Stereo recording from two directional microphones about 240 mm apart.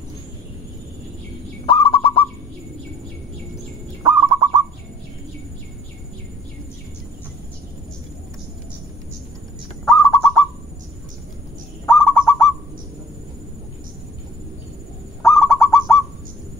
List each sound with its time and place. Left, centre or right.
1.7 s bird: left
4.0 s bird: centre
9.8 s bird: centre
11.8 s owl: centre
15.2 s bird: centre